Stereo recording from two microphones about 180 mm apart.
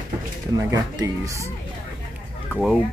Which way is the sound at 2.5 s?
5° right (ahead or behind).